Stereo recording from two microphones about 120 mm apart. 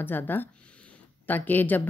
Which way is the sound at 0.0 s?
15° left (ahead or behind).